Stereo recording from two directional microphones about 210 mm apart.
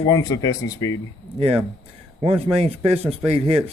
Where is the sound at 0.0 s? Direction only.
15° left (ahead or behind).